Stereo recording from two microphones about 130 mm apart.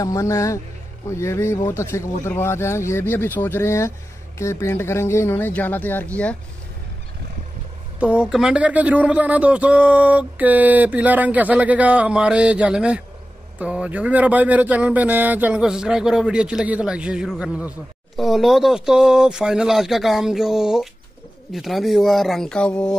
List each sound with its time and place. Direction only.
0.0 s speech: 25° left (ahead or behind); by 6.3 s 10° left (ahead or behind)
8.0 s speech: 10° right (ahead or behind); by 22.9 s 5° left (ahead or behind)